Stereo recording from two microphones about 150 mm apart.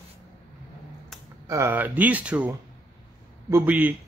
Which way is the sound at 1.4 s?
15° right (ahead or behind).